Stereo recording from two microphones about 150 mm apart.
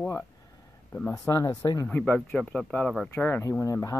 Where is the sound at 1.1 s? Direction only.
20° left (ahead or behind).